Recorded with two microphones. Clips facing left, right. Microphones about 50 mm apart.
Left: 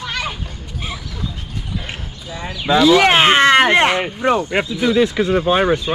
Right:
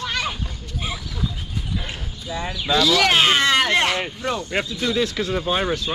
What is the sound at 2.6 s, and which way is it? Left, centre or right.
Speech, left.